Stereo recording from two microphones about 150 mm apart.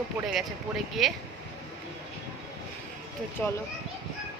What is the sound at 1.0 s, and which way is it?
Speech, centre (ahead or behind).